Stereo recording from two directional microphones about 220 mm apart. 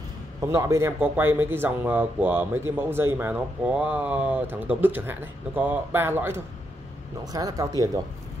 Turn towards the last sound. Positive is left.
turn(degrees=-15)  # may be behind; listen again after turning